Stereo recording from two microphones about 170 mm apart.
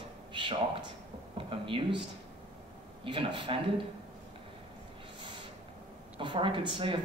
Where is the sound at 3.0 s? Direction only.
30° right (ahead or behind).